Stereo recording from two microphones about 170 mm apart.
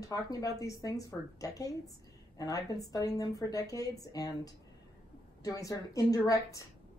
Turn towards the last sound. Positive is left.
turn(degrees=20)  # may be behind; listen again after turning